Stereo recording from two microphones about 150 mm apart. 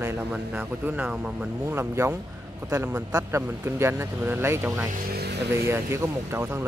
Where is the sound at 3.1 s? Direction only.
20° right (ahead or behind).